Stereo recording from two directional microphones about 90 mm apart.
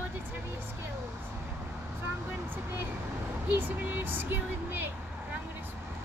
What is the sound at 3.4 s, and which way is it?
Speech, 20° right (ahead or behind).